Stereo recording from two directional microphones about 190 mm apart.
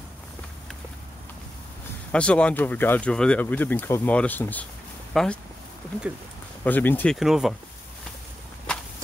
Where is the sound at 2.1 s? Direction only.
5° left (ahead or behind).